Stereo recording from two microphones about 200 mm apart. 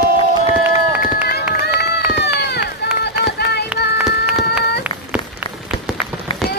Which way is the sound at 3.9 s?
5° right (ahead or behind).